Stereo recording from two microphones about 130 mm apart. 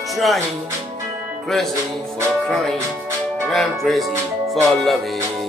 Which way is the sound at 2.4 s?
5° left (ahead or behind).